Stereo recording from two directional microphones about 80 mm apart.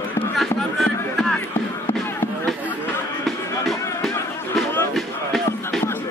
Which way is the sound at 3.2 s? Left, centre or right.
Centre.